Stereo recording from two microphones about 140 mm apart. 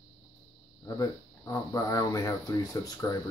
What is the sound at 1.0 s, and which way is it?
Speech, 25° left (ahead or behind).